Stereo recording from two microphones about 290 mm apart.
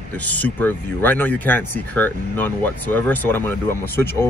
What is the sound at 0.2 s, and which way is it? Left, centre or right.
Speech, centre.